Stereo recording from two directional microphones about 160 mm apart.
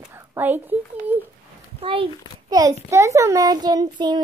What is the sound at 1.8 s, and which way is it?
A child's voice, 35° right (ahead or behind).